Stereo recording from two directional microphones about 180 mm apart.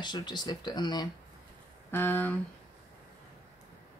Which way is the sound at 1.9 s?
10° left (ahead or behind).